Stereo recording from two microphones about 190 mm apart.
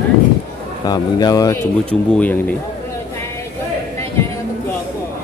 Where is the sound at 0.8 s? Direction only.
20° left (ahead or behind).